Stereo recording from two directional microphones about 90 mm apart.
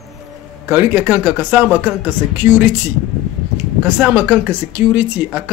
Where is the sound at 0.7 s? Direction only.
20° right (ahead or behind).